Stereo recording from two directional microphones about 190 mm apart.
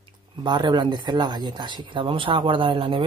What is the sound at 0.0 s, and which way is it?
Speech, 25° right (ahead or behind).